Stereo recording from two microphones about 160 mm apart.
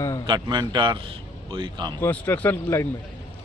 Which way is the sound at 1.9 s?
10° left (ahead or behind).